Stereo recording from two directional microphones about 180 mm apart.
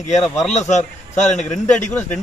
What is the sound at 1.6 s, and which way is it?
Speech, 5° left (ahead or behind).